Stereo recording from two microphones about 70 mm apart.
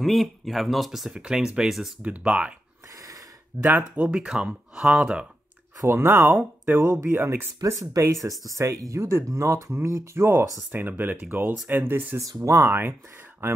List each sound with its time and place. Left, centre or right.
0.0 s speech: centre
2.0 s speech: centre
3.6 s speech: right
4.1 s speech: centre
5.9 s speech: right
7.6 s speech: right
12.2 s speech: right